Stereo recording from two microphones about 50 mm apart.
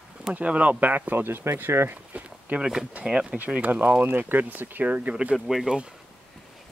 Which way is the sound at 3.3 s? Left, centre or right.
Right.